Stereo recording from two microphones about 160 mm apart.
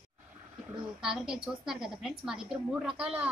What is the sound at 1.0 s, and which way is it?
A woman's voice, 5° right (ahead or behind).